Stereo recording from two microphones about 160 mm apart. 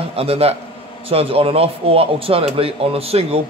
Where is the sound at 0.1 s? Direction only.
40° right (ahead or behind).